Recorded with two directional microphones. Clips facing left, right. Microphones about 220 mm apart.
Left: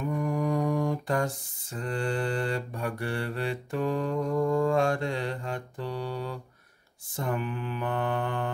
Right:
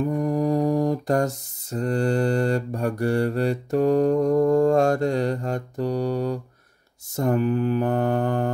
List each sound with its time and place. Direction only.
0.0 s mantra: 35° right (ahead or behind)